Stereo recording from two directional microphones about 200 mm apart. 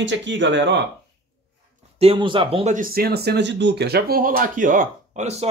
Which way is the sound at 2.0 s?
25° right (ahead or behind).